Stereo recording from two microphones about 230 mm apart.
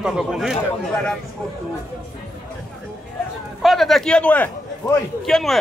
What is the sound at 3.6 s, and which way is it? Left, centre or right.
A man's voice, centre.